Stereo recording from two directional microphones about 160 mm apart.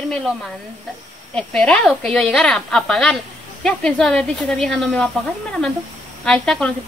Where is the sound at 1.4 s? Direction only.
5° left (ahead or behind).